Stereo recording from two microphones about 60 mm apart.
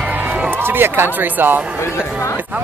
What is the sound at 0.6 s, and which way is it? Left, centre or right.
Speech, right.